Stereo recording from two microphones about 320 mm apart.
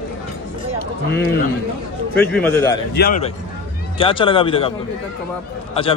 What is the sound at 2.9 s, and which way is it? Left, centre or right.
Speech, left.